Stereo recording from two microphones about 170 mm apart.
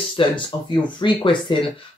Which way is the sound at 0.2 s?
30° left (ahead or behind).